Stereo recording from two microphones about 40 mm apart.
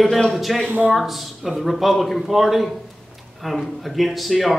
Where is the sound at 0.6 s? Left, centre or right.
Right.